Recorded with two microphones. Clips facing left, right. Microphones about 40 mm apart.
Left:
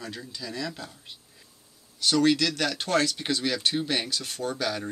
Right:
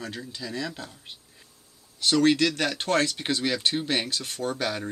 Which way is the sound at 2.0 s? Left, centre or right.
Right.